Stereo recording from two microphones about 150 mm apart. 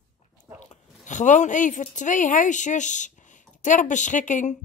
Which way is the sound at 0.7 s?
55° left (ahead or behind).